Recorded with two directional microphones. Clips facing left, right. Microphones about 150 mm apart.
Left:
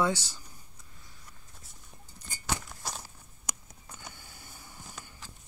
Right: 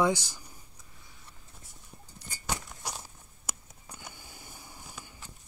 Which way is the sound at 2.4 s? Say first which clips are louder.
Left 1 dB; 10° right (ahead or behind).